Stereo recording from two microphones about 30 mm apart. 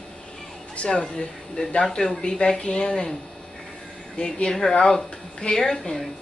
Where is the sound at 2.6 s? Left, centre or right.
Left.